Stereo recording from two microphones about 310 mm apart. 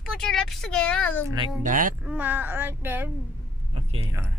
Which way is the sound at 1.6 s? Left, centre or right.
Right.